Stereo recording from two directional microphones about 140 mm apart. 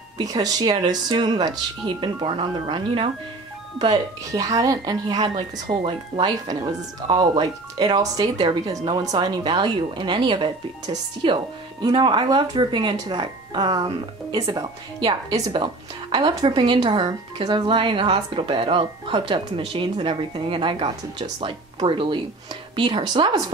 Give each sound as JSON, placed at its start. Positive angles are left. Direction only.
{"t": 0.2, "sound": "speech", "side_deg": -25}
{"t": 3.8, "sound": "speech", "side_deg": -25}